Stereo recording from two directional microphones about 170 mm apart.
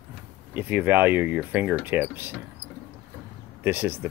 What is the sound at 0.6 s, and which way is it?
Speech, 10° right (ahead or behind).